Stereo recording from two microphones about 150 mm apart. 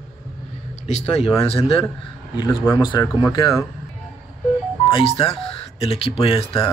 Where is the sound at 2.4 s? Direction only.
30° left (ahead or behind).